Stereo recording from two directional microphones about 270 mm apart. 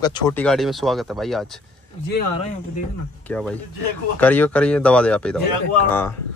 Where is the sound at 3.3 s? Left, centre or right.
Centre.